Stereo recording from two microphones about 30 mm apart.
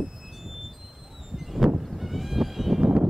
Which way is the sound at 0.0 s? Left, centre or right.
Centre.